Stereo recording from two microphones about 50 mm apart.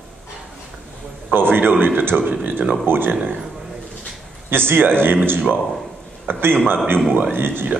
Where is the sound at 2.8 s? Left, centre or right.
Right.